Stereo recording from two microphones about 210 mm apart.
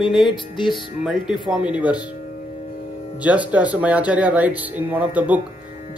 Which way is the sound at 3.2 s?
5° right (ahead or behind).